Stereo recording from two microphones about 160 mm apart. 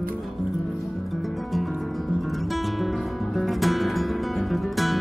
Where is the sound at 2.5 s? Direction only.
Centre (ahead or behind).